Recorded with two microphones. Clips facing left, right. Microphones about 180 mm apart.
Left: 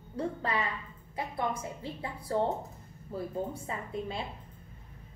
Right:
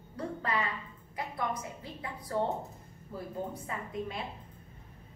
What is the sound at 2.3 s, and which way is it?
A woman's voice, 30° left (ahead or behind).